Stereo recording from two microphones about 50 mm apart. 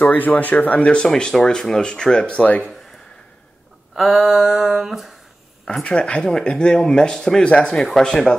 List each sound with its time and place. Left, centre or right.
0.0 s speech: left; by 2.4 s centre
3.9 s a sound: centre
5.9 s speech: centre